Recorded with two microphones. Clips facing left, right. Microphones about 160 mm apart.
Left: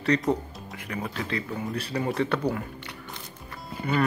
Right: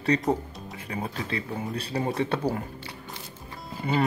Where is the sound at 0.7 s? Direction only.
30° right (ahead or behind).